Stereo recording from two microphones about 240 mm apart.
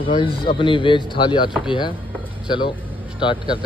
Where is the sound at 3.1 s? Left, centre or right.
Centre.